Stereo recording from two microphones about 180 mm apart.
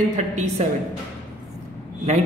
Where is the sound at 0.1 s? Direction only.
40° right (ahead or behind).